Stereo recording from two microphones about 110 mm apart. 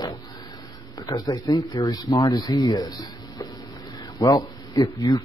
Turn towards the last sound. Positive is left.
turn(degrees=30)  # may be behind; listen again after turning